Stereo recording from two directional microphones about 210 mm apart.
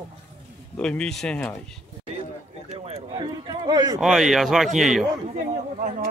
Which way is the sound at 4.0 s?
Centre (ahead or behind).